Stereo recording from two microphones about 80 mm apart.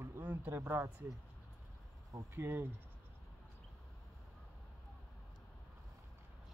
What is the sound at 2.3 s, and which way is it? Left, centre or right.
Speech, right.